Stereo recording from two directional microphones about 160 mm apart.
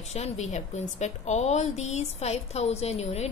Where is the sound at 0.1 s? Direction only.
45° left (ahead or behind).